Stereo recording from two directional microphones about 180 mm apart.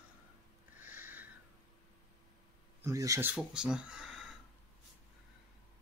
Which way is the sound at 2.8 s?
20° right (ahead or behind).